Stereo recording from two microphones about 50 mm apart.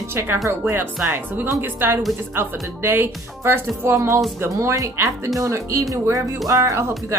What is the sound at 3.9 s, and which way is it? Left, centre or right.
Speech, right.